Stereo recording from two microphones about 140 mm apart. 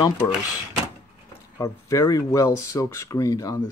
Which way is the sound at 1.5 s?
20° left (ahead or behind).